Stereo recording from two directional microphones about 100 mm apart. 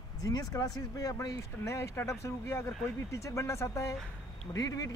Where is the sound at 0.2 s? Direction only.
40° left (ahead or behind).